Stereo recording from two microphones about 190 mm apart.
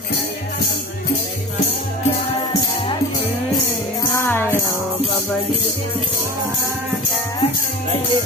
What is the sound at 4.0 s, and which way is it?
Music, 10° left (ahead or behind).